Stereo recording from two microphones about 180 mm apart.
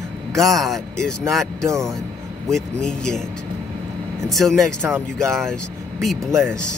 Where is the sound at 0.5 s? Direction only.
Centre (ahead or behind).